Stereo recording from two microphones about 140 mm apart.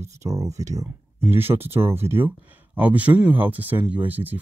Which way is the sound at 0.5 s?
55° right (ahead or behind).